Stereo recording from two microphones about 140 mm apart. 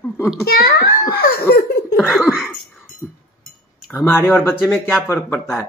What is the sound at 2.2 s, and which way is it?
Speech, 5° right (ahead or behind).